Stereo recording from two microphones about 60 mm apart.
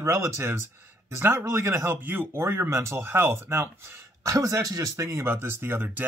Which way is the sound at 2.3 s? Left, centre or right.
Right.